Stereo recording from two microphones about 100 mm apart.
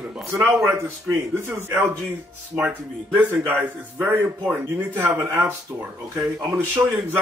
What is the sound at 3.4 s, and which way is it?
Speech, 20° right (ahead or behind).